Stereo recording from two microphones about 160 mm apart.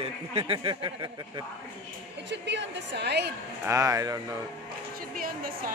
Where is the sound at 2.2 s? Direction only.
90° right.